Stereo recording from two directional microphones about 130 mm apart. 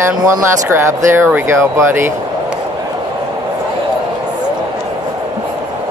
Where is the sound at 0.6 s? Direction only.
20° right (ahead or behind).